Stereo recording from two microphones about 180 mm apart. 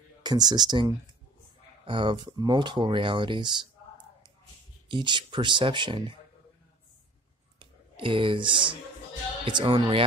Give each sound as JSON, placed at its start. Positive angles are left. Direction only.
{"t": 0.2, "sound": "speech", "side_deg": -25}
{"t": 4.8, "sound": "speech", "side_deg": -25}
{"t": 7.5, "sound": "a sound", "side_deg": -30}
{"t": 9.5, "sound": "speech", "side_deg": -30}